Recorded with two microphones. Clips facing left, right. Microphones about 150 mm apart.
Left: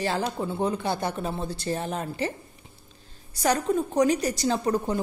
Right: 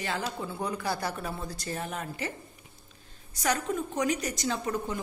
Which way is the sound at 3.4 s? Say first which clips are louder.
Left 6 dB; 35° left (ahead or behind).